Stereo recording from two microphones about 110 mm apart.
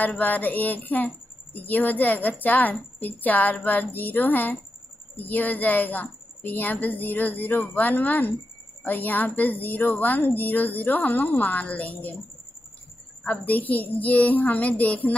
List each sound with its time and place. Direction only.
0.2 s speech: 15° left (ahead or behind)
13.2 s speech: 15° left (ahead or behind)